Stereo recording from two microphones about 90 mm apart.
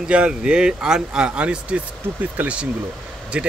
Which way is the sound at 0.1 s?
10° right (ahead or behind).